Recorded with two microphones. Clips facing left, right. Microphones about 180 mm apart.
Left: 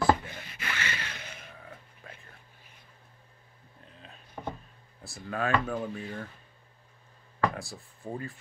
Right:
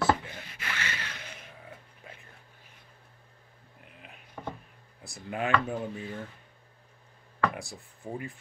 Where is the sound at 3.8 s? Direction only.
15° right (ahead or behind).